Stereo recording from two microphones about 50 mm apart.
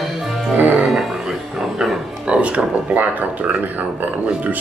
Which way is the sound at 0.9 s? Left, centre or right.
Centre.